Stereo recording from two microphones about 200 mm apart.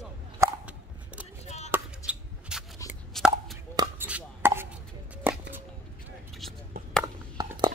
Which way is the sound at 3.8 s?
10° right (ahead or behind).